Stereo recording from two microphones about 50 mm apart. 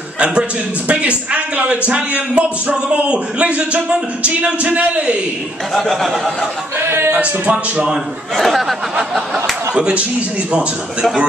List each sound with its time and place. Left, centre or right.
0.2 s a man's voice: centre
5.8 s speech: centre
6.8 s speech: right
8.4 s speech: centre
9.1 s a sound: centre
9.8 s a man's voice: centre